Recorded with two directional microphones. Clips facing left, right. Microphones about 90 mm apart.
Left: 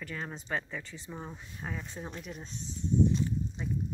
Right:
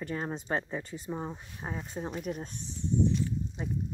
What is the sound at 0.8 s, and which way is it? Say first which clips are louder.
Speech: right 7 dB; 45° right (ahead or behind).